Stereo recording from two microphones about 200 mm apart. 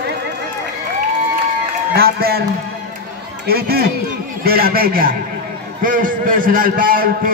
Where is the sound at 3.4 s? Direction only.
50° right (ahead or behind).